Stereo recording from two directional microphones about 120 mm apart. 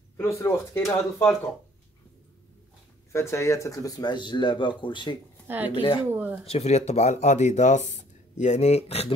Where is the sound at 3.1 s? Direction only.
25° left (ahead or behind); by 5.1 s 45° left (ahead or behind).